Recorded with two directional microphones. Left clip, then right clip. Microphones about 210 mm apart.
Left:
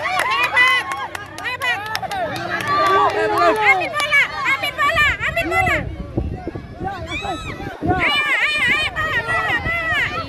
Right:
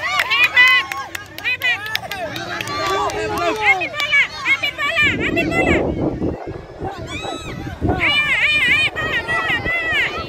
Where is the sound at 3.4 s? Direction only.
25° left (ahead or behind).